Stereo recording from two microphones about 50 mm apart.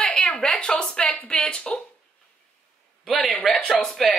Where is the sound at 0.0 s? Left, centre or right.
Centre.